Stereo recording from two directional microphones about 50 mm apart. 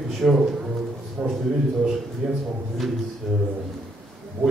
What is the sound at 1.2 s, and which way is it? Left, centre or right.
A man's voice, centre.